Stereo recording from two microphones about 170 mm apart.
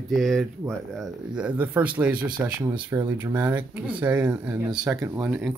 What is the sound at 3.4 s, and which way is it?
Speech, 10° right (ahead or behind).